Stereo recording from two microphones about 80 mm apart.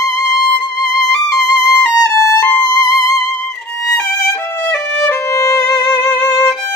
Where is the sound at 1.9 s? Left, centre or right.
Left.